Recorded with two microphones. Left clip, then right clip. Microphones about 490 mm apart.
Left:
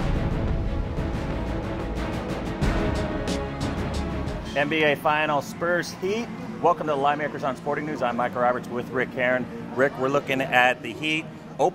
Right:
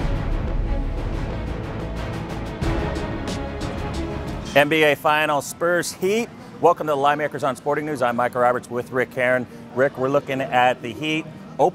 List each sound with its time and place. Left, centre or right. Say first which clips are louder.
2.9 s music: even; centre
4.6 s a man's voice: right 6 dB; right